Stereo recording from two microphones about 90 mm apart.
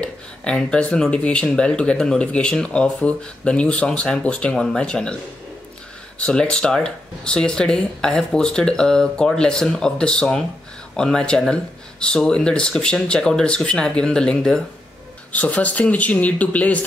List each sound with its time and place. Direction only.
0.0 s a sound: 10° left (ahead or behind)
1.1 s speech: 10° left (ahead or behind)
6.1 s speech: 10° left (ahead or behind)